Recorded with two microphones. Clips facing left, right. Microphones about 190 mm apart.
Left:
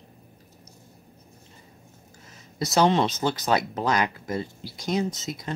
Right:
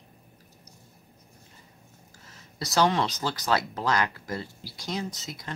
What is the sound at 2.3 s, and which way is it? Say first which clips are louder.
Speech: left 7 dB; 20° left (ahead or behind).